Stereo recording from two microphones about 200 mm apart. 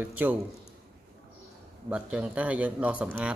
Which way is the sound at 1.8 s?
5° right (ahead or behind).